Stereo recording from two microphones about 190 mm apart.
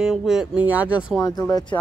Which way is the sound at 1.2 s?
20° left (ahead or behind).